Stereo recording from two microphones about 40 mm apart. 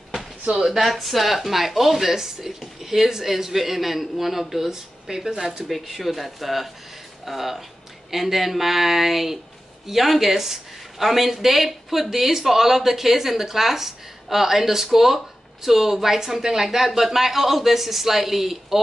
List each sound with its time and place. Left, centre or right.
0.7 s speech: centre
5.7 s speech: centre